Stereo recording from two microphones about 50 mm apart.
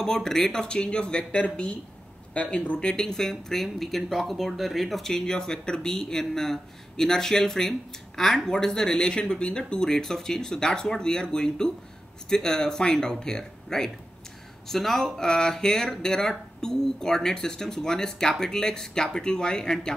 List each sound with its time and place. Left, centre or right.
0.0 s speech: centre
5.1 s speech: centre